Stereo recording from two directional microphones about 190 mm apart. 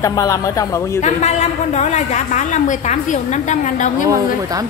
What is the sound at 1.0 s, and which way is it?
A woman's voice, 35° left (ahead or behind).